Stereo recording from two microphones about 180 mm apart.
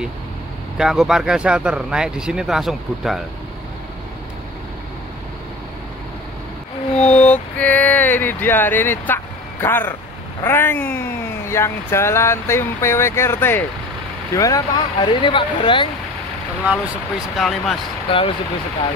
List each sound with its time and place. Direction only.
0.7 s speech: centre (ahead or behind)
7.0 s a sound: 5° left (ahead or behind)
10.4 s speech: 10° left (ahead or behind)
17.4 s speech: centre (ahead or behind)
18.1 s speech: 30° left (ahead or behind)